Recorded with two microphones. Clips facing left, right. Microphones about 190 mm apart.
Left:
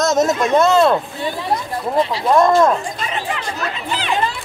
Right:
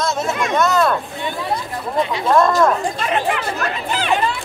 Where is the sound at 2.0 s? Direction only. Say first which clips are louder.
Left 1 dB; 35° left (ahead or behind).